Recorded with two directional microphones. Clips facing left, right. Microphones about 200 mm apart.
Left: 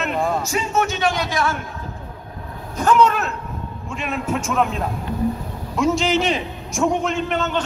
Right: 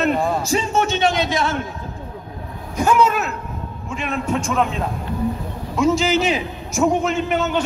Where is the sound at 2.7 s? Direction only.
10° right (ahead or behind).